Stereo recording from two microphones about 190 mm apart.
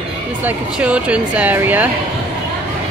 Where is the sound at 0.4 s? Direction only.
10° right (ahead or behind).